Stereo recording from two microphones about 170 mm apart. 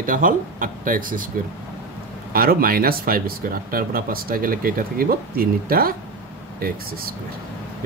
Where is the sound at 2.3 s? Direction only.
60° right (ahead or behind).